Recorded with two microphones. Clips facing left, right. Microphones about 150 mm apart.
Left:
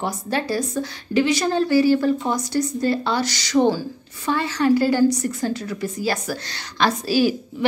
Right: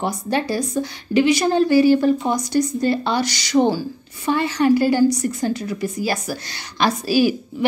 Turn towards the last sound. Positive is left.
turn(degrees=-15)  # may be behind; listen again after turning